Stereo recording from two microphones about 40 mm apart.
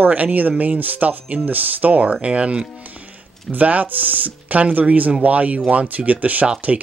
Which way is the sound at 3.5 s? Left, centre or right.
Right.